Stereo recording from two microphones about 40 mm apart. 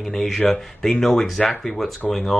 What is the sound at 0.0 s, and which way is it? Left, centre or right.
Speech, centre.